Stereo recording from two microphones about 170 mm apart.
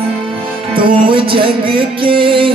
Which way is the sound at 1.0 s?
30° right (ahead or behind).